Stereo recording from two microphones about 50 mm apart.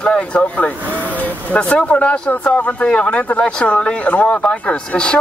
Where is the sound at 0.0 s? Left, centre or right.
Left.